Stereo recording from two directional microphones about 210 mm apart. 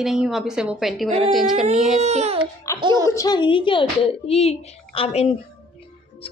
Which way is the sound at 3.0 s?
15° left (ahead or behind).